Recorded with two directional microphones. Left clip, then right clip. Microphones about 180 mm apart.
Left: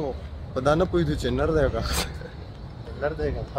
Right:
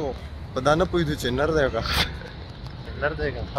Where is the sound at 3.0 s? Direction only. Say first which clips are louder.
Right 1 dB; 20° left (ahead or behind).